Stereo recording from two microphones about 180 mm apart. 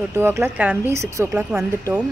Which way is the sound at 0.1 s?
15° right (ahead or behind).